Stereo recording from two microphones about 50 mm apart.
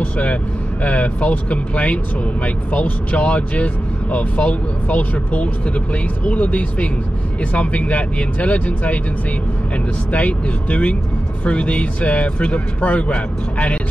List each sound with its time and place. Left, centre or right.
0.0 s vehicle: left
0.8 s speech: left
10.1 s speech: left